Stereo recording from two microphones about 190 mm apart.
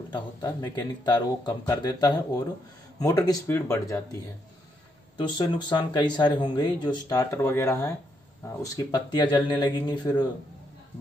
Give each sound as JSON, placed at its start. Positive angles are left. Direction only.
{"t": 0.1, "sound": "speech", "side_deg": 20}